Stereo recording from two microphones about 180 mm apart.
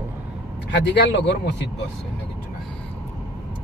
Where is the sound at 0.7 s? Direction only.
75° left (ahead or behind).